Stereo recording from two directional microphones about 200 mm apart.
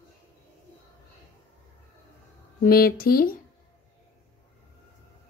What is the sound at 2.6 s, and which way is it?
Mantra, 45° left (ahead or behind).